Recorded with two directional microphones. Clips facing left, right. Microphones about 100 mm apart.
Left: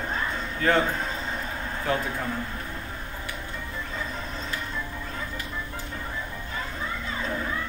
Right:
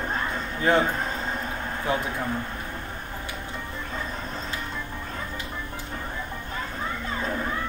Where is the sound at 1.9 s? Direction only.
20° right (ahead or behind).